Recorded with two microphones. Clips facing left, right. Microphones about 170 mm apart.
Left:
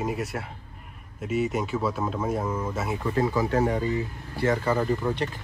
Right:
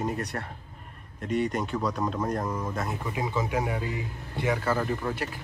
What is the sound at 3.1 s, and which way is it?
Speech, 10° right (ahead or behind).